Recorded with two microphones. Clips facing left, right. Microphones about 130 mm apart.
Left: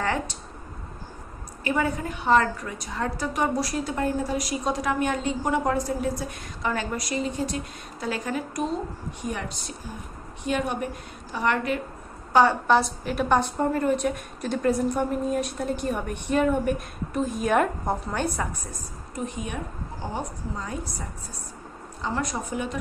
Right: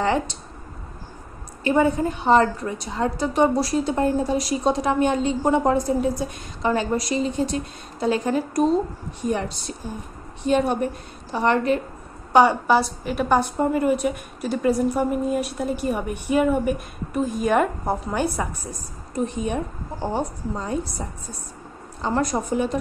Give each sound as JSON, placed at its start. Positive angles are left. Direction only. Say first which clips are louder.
{"t": 0.0, "sound": "a woman's voice", "louder": "right 5 dB", "side_deg": -20}
{"t": 1.6, "sound": "a woman's voice", "louder": "right 7 dB", "side_deg": -25}
{"t": 12.3, "sound": "a woman's voice", "louder": "right 3 dB", "side_deg": -15}
{"t": 12.6, "sound": "a woman's voice", "louder": "right 2 dB", "side_deg": -5}
{"t": 19.1, "sound": "a woman's voice", "louder": "right 7 dB", "side_deg": -30}
{"t": 22.0, "sound": "speech", "louder": "right 6 dB", "side_deg": -40}